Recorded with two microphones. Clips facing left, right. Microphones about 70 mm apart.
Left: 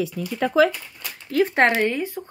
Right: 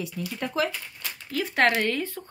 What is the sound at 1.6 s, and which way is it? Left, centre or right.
Speech, left.